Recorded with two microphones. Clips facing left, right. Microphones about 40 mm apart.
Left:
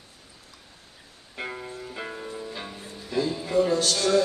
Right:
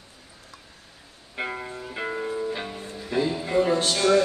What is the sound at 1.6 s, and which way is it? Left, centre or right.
Music, right.